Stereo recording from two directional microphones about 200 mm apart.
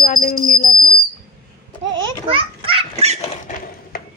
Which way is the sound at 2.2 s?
25° right (ahead or behind).